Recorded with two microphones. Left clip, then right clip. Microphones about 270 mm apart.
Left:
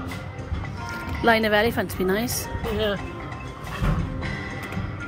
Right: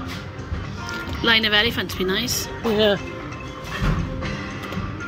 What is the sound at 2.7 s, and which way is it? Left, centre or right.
Speech, right.